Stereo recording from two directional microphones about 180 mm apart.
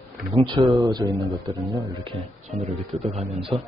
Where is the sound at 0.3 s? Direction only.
20° right (ahead or behind).